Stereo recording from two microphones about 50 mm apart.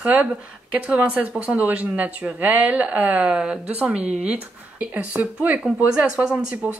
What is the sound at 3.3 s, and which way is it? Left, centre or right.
Speech, centre.